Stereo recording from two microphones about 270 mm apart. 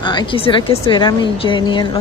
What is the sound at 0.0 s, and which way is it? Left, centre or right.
Speech, centre.